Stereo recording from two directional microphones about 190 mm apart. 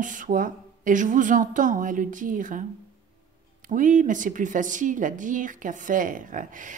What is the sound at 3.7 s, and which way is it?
Speech, 45° right (ahead or behind).